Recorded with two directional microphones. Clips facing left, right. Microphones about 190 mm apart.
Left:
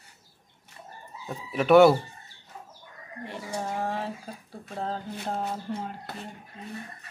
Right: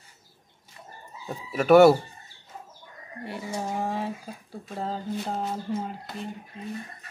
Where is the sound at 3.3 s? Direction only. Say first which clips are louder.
Right 1 dB; 10° right (ahead or behind).